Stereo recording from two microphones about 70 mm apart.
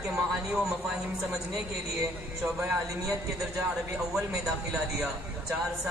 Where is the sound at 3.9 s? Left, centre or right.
Centre.